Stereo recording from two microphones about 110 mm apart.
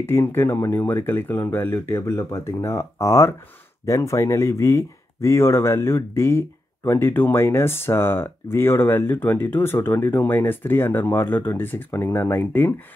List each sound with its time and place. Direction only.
0.0 s speech: 20° left (ahead or behind)